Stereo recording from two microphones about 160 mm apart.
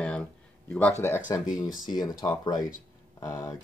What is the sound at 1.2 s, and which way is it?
Speech, 20° left (ahead or behind).